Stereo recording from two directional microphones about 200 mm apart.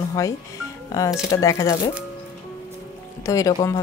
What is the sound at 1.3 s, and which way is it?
Speech, 15° left (ahead or behind).